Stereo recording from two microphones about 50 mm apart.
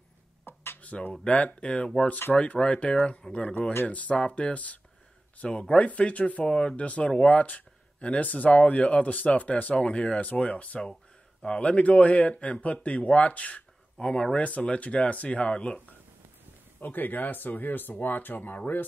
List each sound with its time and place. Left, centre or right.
0.5 s a sound: left
0.8 s speech: left
13.9 s speech: centre
14.4 s speech: left
16.9 s speech: left